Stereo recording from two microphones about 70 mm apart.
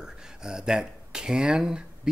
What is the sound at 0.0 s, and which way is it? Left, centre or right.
Speech, centre.